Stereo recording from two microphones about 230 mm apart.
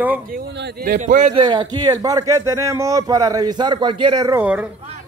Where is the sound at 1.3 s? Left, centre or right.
Centre.